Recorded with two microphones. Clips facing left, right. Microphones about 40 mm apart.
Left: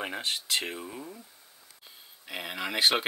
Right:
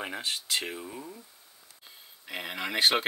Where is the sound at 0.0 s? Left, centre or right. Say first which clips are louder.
Left 1 dB; centre.